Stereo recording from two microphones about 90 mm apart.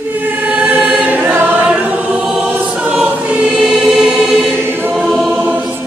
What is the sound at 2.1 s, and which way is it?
Choir, 5° right (ahead or behind).